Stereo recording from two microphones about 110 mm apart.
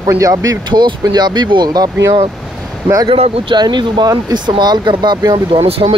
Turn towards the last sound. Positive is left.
turn(degrees=-65)  # may be behind; listen again after turning